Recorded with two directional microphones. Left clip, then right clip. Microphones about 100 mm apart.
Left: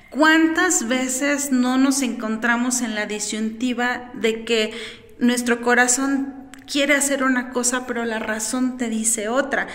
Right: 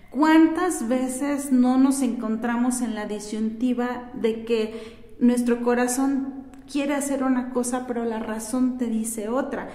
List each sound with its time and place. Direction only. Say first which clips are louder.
0.2 s a woman's voice: left 2 dB; 35° right (ahead or behind)